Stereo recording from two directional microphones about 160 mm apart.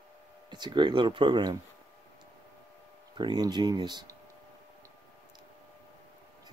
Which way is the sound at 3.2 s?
25° right (ahead or behind).